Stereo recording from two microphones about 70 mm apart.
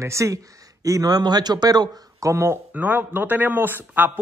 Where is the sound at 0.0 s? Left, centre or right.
Right.